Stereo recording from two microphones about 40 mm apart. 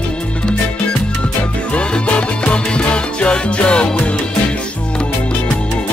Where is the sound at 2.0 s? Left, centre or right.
Left.